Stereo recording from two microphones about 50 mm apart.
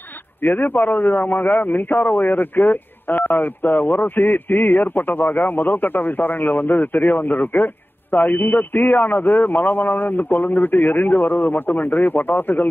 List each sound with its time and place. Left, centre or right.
0.4 s a man's voice: left